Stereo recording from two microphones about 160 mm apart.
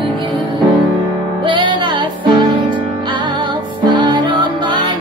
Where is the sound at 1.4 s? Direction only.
30° right (ahead or behind).